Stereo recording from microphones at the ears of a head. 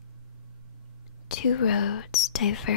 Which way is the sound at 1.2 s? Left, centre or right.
Left.